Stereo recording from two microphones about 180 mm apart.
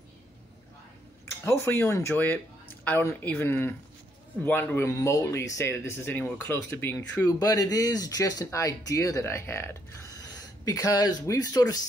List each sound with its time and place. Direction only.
1.2 s speech: 15° left (ahead or behind)